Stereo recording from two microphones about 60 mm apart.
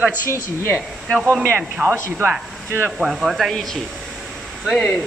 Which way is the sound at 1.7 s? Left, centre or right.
Right.